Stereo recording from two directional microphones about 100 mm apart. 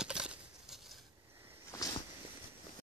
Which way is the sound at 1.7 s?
35° left (ahead or behind).